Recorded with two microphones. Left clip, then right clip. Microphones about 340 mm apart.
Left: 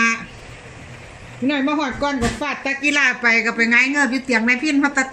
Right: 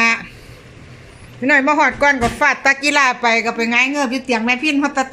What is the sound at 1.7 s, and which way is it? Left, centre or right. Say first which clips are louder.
A woman's voice: right 8 dB; right.